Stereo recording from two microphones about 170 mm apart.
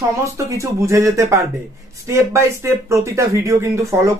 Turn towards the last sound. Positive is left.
turn(degrees=-15)  # may be behind; listen again after turning